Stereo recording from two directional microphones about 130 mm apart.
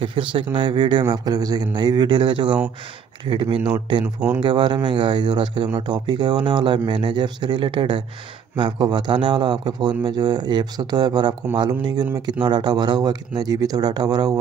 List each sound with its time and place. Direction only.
0.0 s speech: 40° right (ahead or behind)
4.0 s speech: 10° right (ahead or behind)
4.4 s speech: 35° right (ahead or behind)